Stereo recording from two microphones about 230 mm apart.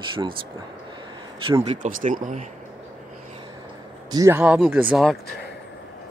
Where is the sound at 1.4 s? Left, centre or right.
Centre.